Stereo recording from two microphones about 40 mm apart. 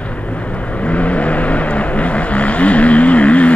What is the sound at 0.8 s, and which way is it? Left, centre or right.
Vehicle, left.